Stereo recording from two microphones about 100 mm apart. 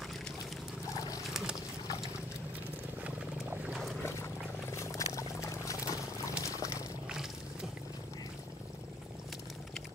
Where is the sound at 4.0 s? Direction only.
25° left (ahead or behind).